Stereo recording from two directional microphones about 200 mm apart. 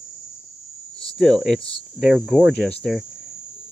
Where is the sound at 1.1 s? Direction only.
Centre (ahead or behind).